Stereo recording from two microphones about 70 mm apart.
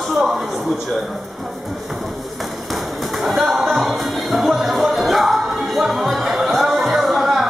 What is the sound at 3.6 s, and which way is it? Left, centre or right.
Music, centre.